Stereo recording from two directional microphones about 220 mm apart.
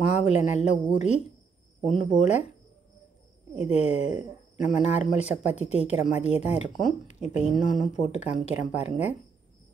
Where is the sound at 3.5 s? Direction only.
30° left (ahead or behind).